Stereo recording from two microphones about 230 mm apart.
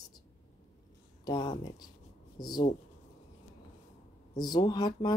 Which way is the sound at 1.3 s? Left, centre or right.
Centre.